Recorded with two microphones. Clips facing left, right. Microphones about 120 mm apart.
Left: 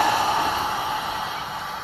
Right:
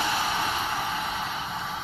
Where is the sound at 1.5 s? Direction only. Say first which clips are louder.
Left 2 dB; centre (ahead or behind).